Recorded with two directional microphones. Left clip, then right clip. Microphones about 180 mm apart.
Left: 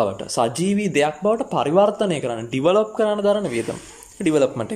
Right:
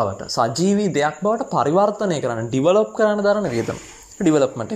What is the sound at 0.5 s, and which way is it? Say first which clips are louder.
Speech: right 3 dB; 40° left (ahead or behind).